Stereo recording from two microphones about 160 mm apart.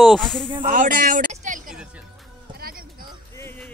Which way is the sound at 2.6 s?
65° right (ahead or behind).